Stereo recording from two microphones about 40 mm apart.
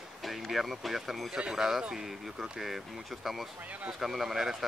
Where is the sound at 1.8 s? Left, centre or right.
Centre.